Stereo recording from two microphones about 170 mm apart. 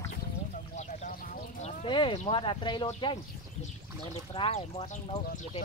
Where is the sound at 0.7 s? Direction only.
45° left (ahead or behind).